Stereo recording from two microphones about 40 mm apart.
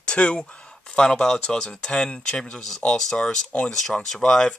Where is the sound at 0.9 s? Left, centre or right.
Centre.